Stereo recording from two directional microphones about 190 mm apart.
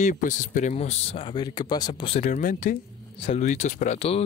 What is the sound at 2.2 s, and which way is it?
Speech, 45° left (ahead or behind).